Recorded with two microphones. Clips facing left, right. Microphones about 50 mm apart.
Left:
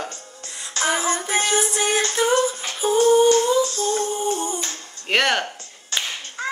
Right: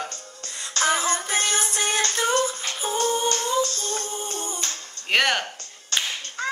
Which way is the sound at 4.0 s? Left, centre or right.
Left.